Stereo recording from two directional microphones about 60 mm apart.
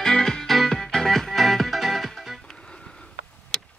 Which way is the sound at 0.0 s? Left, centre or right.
Centre.